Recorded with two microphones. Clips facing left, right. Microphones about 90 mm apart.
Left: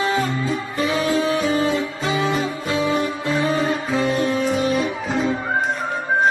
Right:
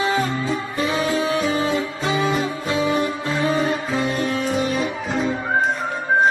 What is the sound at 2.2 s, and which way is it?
Music, centre (ahead or behind).